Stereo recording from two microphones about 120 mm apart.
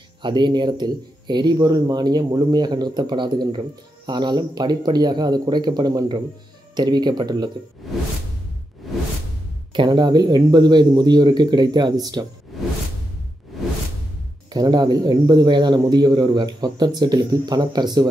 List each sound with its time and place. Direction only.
0.2 s speech: 40° right (ahead or behind)
8.9 s whoosh: centre (ahead or behind)
9.8 s speech: 40° right (ahead or behind)
14.5 s speech: 35° right (ahead or behind)